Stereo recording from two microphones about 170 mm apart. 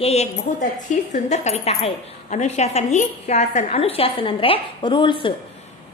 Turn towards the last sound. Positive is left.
turn(degrees=30)  # may be behind; listen again after turning